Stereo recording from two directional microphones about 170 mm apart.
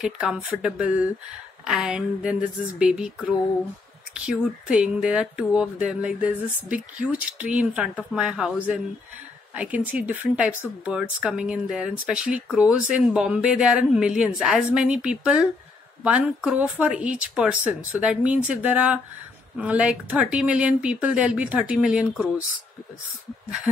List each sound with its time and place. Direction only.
0.0 s speech: 5° right (ahead or behind)